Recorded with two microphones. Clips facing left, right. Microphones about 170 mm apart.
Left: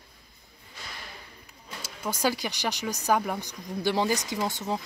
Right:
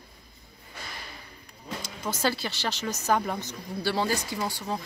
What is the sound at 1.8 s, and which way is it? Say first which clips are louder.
Speech: left 1 dB; 10° left (ahead or behind).